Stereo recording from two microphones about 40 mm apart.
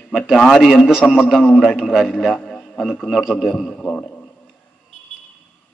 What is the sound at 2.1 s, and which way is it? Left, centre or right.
Speech, centre.